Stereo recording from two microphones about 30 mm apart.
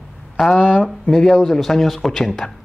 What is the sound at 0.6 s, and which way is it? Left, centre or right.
Speech, left.